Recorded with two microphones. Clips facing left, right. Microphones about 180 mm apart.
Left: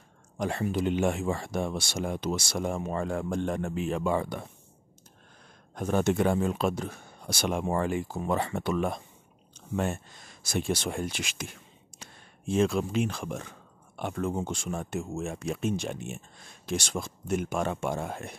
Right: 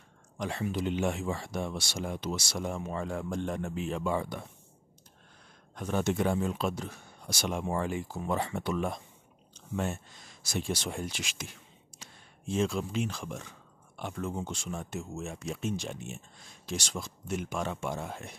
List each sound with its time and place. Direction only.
0.4 s speech: 50° left (ahead or behind)
5.8 s speech: 50° left (ahead or behind)